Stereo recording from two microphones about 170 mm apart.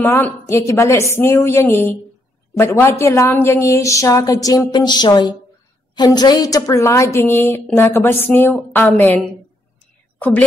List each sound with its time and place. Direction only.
0.0 s a woman's voice: 15° left (ahead or behind)